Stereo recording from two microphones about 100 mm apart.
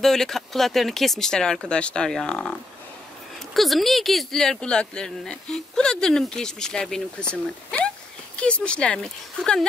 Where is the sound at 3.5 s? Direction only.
Centre (ahead or behind).